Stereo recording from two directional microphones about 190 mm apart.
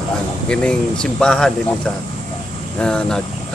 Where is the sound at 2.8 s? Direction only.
5° left (ahead or behind).